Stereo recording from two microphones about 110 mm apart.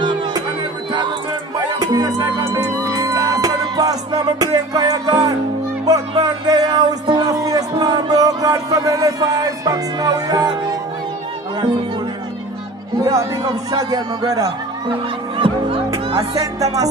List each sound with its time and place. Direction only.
0.0 s music: 45° right (ahead or behind)
1.8 s music: 35° right (ahead or behind)
13.0 s speech: 35° right (ahead or behind)
15.3 s music: 55° right (ahead or behind)
16.5 s speech: 30° right (ahead or behind)